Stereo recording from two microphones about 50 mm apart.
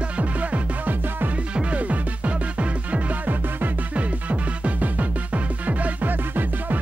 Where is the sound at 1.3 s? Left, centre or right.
Right.